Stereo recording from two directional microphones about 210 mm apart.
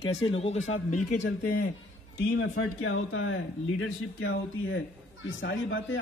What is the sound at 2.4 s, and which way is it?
A man's voice, 70° left (ahead or behind).